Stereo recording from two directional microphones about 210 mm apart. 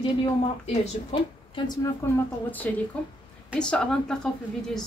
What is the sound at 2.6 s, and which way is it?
A woman's voice, 10° left (ahead or behind).